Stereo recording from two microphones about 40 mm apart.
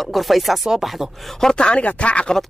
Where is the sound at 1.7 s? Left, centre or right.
Left.